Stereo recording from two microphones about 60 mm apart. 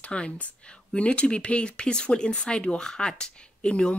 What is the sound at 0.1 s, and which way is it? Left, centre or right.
Speech, centre.